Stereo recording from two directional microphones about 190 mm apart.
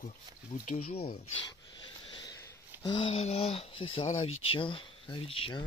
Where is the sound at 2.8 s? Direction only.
25° left (ahead or behind).